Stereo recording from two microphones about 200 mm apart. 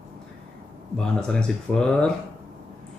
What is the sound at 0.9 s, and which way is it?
Speech, 5° left (ahead or behind).